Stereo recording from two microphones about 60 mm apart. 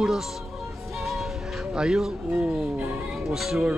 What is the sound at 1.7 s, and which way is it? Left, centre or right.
Speech, centre.